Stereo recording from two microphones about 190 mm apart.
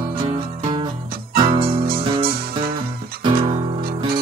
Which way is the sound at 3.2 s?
30° right (ahead or behind).